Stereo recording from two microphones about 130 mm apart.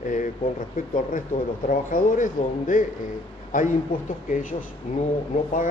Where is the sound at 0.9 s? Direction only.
90° left.